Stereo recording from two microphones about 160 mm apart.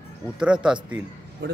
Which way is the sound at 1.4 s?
90° right.